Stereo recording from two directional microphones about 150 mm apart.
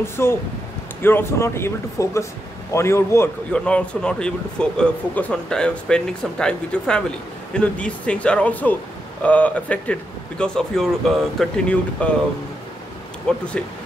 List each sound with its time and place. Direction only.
0.0 s speech: 15° left (ahead or behind)
3.5 s speech: 10° left (ahead or behind)
13.3 s speech: 5° left (ahead or behind)